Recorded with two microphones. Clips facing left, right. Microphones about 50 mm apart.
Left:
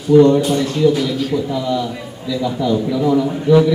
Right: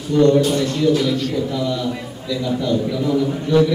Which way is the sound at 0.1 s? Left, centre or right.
Centre.